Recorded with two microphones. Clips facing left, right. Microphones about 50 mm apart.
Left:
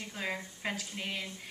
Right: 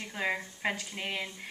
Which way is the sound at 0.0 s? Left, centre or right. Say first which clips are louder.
Right 4 dB; centre.